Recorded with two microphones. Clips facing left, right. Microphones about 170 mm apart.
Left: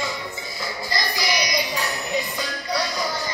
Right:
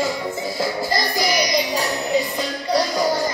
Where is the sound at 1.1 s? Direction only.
40° right (ahead or behind).